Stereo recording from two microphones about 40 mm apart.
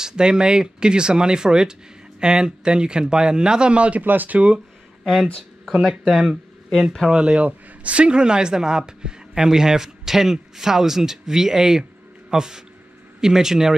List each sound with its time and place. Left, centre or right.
0.0 s speech: centre
4.0 s speech: right
5.0 s speech: centre
7.1 s speech: right
7.4 s speech: right; by 13.7 s centre